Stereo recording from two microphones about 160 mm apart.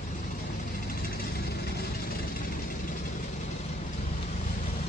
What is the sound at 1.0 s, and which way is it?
Vehicle, 75° left (ahead or behind).